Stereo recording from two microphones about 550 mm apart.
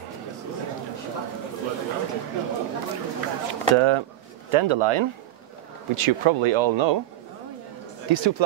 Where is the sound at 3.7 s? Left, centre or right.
Right.